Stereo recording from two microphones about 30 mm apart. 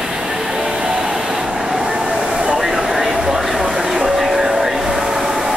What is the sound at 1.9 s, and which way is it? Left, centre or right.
Vehicle, right.